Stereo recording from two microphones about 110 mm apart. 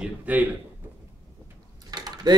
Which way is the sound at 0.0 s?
15° right (ahead or behind).